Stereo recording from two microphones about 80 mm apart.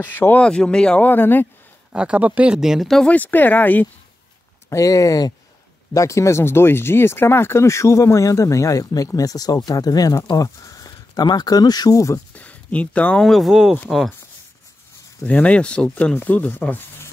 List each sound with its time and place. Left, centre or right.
0.0 s speech: left
0.4 s speech: centre
1.0 s speech: left
1.9 s speech: centre
3.1 s speech: left
4.6 s speech: left
11.1 s speech: left
12.4 s speech: centre
13.2 s speech: centre
15.2 s speech: centre